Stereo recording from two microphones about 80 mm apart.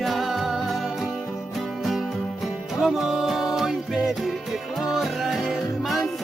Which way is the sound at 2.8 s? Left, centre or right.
Centre.